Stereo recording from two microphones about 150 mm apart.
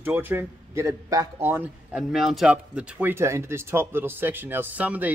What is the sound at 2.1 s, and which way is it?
Speech, centre (ahead or behind).